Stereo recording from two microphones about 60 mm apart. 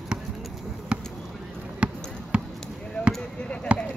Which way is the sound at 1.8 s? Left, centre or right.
Centre.